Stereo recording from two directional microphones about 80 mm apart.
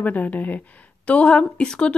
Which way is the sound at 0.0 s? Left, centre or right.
Centre.